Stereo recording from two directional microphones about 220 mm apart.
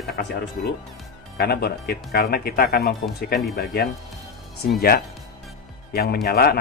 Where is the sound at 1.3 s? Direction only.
45° left (ahead or behind).